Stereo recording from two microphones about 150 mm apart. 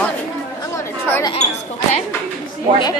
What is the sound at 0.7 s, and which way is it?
Chatter, 20° left (ahead or behind).